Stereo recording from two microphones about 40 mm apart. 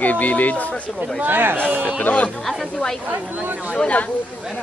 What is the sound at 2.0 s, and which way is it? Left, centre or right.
Speech, left.